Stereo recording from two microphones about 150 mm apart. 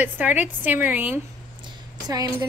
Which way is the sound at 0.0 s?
10° right (ahead or behind).